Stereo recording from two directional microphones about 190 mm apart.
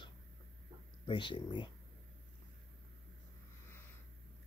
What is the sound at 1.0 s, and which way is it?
Speech, 25° left (ahead or behind).